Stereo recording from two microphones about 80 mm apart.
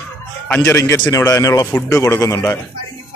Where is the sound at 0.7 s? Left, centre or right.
Left.